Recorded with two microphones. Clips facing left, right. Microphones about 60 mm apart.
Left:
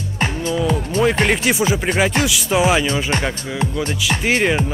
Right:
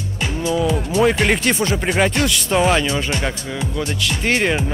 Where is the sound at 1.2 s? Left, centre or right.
Centre.